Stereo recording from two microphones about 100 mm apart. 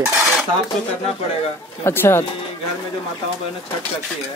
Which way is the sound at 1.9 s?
25° left (ahead or behind).